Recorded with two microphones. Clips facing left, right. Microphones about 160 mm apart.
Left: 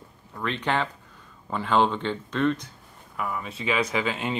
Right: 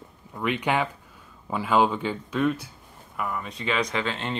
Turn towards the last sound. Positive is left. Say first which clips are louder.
# left 2 dB
turn(degrees=5)  # may be behind; listen again after turning